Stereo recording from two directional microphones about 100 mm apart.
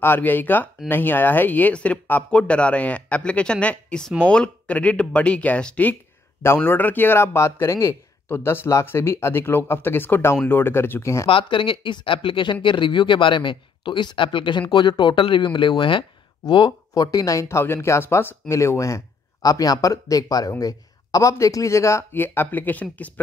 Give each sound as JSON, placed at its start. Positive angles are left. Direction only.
{"t": 0.0, "sound": "speech", "side_deg": 20}
{"t": 6.4, "sound": "speech", "side_deg": 25}
{"t": 11.2, "sound": "speech", "side_deg": 60}
{"t": 16.9, "sound": "a man's voice", "side_deg": 35}